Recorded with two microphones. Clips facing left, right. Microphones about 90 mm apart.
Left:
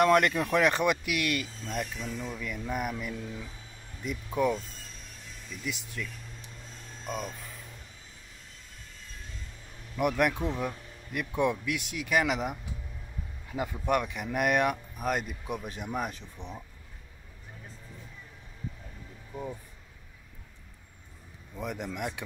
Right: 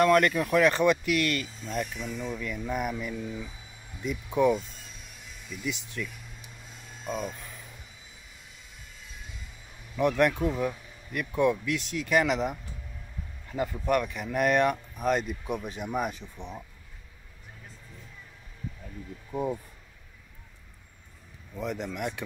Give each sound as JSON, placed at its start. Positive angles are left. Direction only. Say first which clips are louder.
{"t": 0.0, "sound": "speech", "louder": "right 1 dB", "side_deg": 20}
{"t": 1.5, "sound": "speech", "louder": "right 2 dB", "side_deg": 0}
{"t": 9.0, "sound": "vehicle", "louder": "even", "side_deg": -5}
{"t": 9.9, "sound": "speech", "louder": "right 3 dB", "side_deg": 10}
{"t": 10.6, "sound": "a sound", "louder": "right 4 dB", "side_deg": 5}
{"t": 11.1, "sound": "speech", "louder": "right 3 dB", "side_deg": 15}
{"t": 21.5, "sound": "speech", "louder": "right 2 dB", "side_deg": 15}